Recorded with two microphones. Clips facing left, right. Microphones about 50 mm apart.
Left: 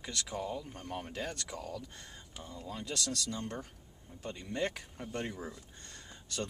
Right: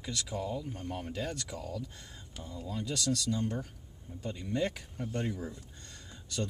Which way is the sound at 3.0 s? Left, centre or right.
Centre.